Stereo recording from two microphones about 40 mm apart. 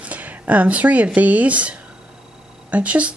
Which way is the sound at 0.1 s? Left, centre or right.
Right.